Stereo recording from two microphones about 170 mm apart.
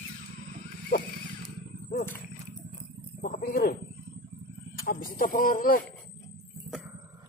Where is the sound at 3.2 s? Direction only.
55° left (ahead or behind).